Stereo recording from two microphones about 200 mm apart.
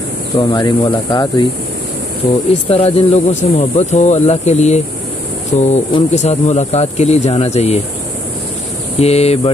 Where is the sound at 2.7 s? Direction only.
30° left (ahead or behind).